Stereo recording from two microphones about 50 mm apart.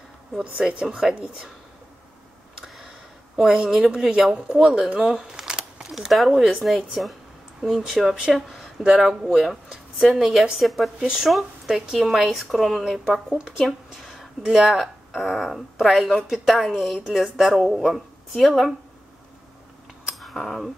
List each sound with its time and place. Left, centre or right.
0.7 s speech: centre
2.6 s tick-tock: centre
3.3 s speech: centre
5.1 s camera: centre
5.9 s a woman's voice: centre
10.6 s speech: centre
13.7 s a sound: centre
14.7 s speech: centre
16.7 s speech: centre
20.1 s a sound: centre